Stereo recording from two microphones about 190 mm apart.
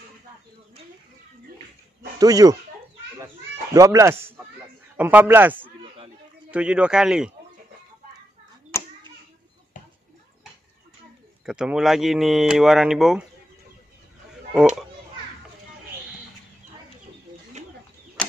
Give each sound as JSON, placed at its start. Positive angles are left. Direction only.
{"t": 2.1, "sound": "speech", "side_deg": -20}
{"t": 3.7, "sound": "speech", "side_deg": -15}
{"t": 11.4, "sound": "speech", "side_deg": -5}